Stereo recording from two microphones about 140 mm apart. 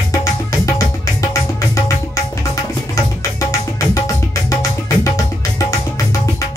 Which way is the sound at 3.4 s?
20° left (ahead or behind).